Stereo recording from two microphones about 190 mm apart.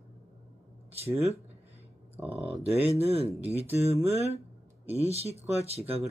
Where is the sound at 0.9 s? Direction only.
30° right (ahead or behind).